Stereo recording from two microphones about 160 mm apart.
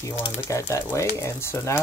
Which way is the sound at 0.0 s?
20° left (ahead or behind).